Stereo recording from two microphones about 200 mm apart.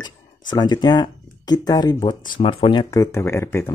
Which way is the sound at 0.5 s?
20° left (ahead or behind).